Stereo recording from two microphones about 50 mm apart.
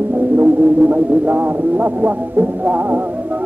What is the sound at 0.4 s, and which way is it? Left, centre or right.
Music, right.